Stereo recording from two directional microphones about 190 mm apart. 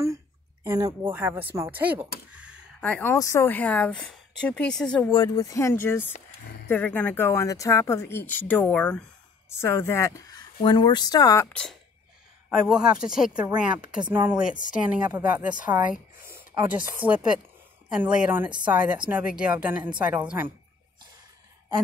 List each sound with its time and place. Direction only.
0.7 s speech: 20° right (ahead or behind)
2.8 s speech: 10° left (ahead or behind)
5.0 s speech: 20° left (ahead or behind); by 20.5 s 10° right (ahead or behind)